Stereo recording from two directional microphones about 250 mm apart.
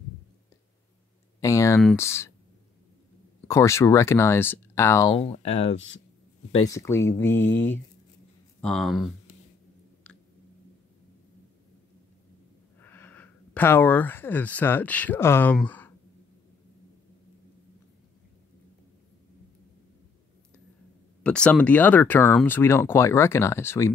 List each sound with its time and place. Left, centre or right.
1.4 s a sound: centre
1.8 s speech: centre
3.4 s speech: centre
5.1 s speech: left
6.5 s speech: centre
10.1 s a sound: centre
12.8 s speech: centre
21.2 s speech: centre